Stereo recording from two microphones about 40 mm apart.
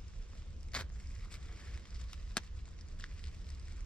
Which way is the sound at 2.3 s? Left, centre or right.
Left.